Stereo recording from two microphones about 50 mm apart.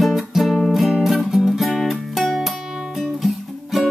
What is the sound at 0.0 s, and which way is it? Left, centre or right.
Music, centre.